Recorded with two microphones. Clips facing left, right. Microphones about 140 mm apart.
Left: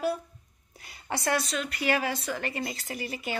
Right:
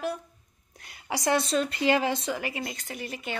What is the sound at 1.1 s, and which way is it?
A woman's voice, 15° right (ahead or behind).